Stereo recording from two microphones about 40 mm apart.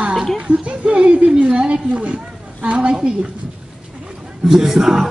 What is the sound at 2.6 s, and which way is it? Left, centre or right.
Music, right.